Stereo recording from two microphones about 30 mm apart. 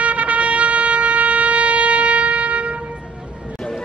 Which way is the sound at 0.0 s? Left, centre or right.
Right.